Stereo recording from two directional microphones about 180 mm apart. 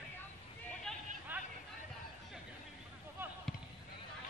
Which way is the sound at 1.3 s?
10° right (ahead or behind).